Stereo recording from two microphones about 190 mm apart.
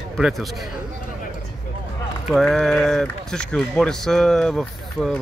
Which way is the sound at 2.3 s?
Centre (ahead or behind).